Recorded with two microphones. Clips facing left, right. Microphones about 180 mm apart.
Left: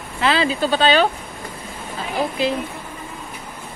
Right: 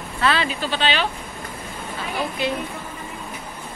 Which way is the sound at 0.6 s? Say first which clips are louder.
Left 7 dB; 40° left (ahead or behind).